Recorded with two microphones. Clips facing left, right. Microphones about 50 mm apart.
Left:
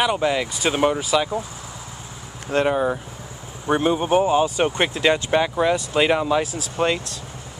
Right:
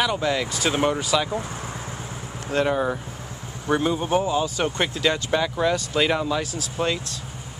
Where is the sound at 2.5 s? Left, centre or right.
Left.